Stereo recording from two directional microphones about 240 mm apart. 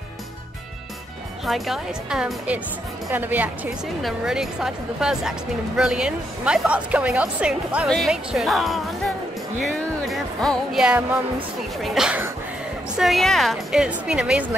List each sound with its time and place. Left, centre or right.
1.4 s speech: centre